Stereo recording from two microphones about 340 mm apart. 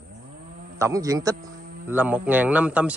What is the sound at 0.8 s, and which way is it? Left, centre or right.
Speech, centre.